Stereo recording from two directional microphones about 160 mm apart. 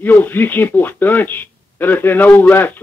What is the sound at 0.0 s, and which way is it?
Speech, 10° left (ahead or behind).